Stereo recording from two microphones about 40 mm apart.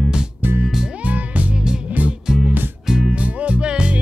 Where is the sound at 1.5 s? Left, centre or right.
Centre.